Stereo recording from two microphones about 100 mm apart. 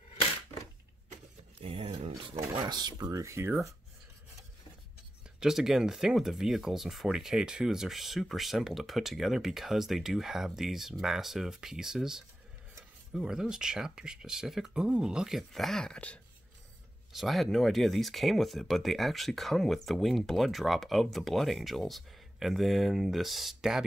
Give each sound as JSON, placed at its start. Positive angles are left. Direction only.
{"t": 1.6, "sound": "speech", "side_deg": -75}
{"t": 2.6, "sound": "speech", "side_deg": -45}
{"t": 5.4, "sound": "speech", "side_deg": -5}
{"t": 17.1, "sound": "speech", "side_deg": 0}